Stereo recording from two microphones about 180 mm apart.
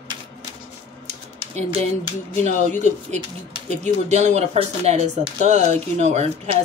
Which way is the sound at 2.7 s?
40° right (ahead or behind).